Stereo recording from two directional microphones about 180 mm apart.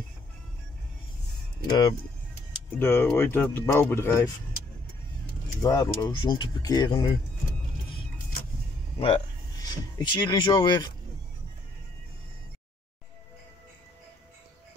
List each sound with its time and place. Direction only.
1.7 s speech: 25° left (ahead or behind)
2.8 s speech: 10° left (ahead or behind)
5.6 s speech: 20° left (ahead or behind)
9.0 s speech: 25° left (ahead or behind)